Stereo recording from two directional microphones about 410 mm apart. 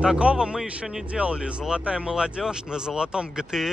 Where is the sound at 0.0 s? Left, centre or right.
Centre.